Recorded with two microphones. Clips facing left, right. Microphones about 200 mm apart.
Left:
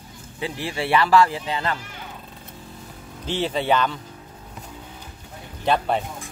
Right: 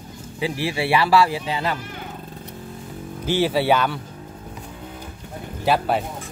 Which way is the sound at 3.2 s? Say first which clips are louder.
Right 4 dB; 10° right (ahead or behind).